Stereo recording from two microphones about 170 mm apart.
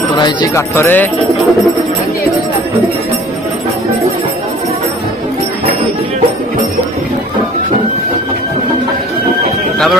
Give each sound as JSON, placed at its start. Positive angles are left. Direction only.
{"t": 0.2, "sound": "speech", "side_deg": 25}
{"t": 0.7, "sound": "speech", "side_deg": 10}